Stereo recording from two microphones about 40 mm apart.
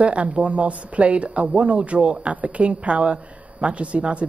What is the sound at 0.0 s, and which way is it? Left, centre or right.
A woman's voice, right.